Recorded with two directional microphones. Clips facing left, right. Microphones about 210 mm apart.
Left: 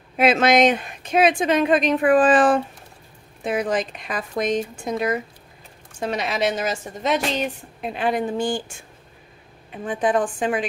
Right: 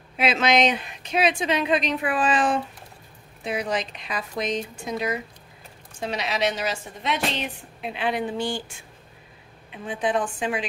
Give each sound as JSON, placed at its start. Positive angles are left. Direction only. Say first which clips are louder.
{"t": 0.2, "sound": "a woman's voice", "louder": "left 5 dB", "side_deg": 50}
{"t": 9.7, "sound": "a woman's voice", "louder": "left 4 dB", "side_deg": 50}